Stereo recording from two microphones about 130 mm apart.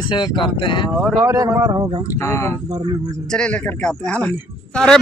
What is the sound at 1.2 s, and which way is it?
Speech, 25° right (ahead or behind).